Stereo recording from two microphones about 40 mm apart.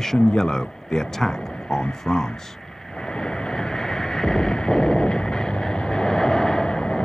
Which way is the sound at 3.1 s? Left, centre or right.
Centre.